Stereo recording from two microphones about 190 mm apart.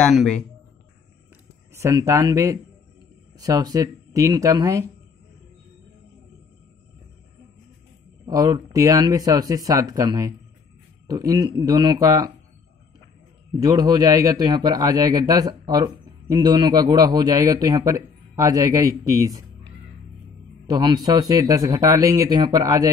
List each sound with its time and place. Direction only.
0.0 s speech: 5° left (ahead or behind)
1.7 s a man's voice: 15° right (ahead or behind)
8.3 s a man's voice: 20° right (ahead or behind)
13.5 s a man's voice: 20° right (ahead or behind)
20.6 s a man's voice: 20° right (ahead or behind)